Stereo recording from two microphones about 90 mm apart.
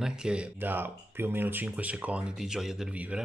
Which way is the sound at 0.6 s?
25° right (ahead or behind).